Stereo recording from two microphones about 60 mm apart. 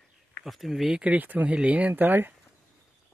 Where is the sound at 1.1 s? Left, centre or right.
Right.